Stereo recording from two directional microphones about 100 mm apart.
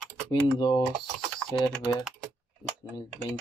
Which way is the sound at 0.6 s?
50° left (ahead or behind).